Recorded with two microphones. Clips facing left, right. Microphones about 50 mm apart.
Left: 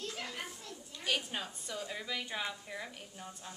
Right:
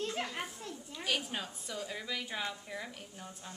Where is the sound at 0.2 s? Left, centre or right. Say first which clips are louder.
Right 4 dB; centre.